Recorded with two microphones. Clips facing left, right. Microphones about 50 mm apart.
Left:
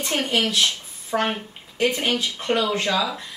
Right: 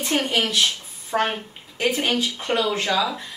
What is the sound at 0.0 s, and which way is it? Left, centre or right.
Speech, centre.